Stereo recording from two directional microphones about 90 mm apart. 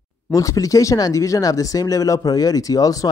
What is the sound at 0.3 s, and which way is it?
Speech, 40° left (ahead or behind).